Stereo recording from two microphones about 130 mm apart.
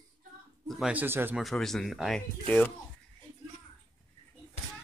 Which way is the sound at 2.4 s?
15° left (ahead or behind).